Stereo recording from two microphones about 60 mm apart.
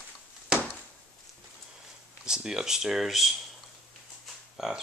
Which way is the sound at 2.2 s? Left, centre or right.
Centre.